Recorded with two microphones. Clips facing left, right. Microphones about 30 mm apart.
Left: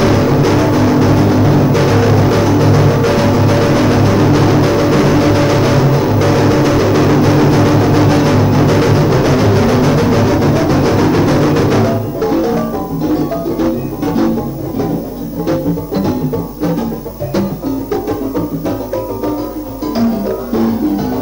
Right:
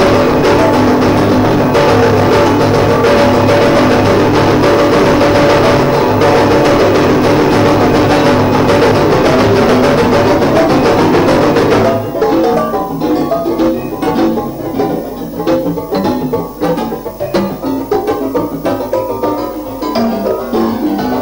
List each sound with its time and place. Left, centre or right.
0.0 s music: right
15.4 s music: right
20.0 s music: right